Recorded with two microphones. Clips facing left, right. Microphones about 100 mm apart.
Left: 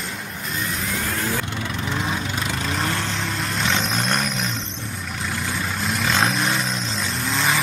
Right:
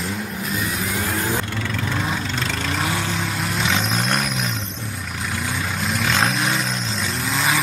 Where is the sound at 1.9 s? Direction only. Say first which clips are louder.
Left 1 dB; 10° left (ahead or behind).